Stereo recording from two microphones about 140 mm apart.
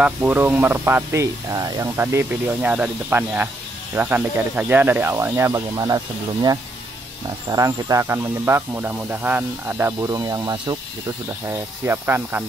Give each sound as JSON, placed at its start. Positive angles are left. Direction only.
{"t": 0.0, "sound": "speech", "side_deg": -10}
{"t": 11.4, "sound": "speech", "side_deg": -15}